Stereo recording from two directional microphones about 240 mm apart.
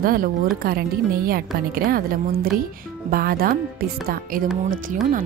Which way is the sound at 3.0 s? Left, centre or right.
Right.